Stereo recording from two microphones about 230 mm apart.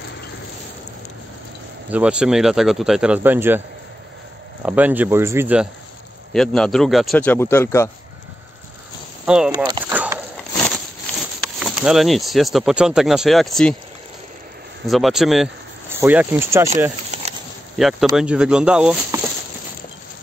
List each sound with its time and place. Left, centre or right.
1.9 s speech: centre
4.6 s speech: centre
6.3 s speech: centre
9.2 s speech: centre
9.5 s speech: centre
10.7 s speech: centre
14.9 s speech: centre
17.7 s speech: centre